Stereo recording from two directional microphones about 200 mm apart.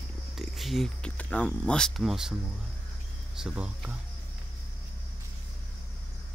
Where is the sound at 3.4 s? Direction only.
5° right (ahead or behind).